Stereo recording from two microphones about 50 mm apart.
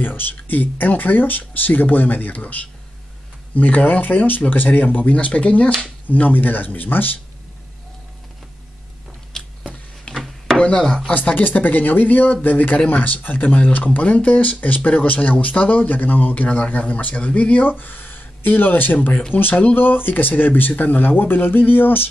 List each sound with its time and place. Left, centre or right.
0.0 s a man's voice: left
6.0 s a man's voice: left
9.3 s a sound: centre
10.1 s a sound: centre
11.1 s a man's voice: left
15.1 s speech: left
15.4 s a man's voice: left